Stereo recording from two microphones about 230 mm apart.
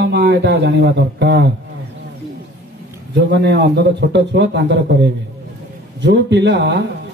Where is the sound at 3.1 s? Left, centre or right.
Right.